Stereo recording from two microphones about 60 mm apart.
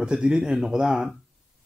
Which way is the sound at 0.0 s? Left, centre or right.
Centre.